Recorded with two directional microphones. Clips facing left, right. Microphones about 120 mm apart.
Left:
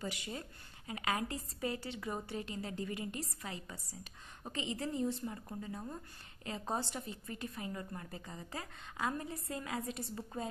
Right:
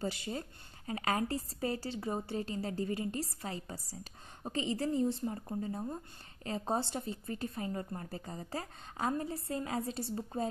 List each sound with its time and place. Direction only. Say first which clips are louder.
0.0 s a woman's voice: right 5 dB; 35° right (ahead or behind)